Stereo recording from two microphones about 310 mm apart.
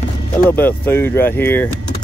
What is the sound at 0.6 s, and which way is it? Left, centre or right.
Speech, centre.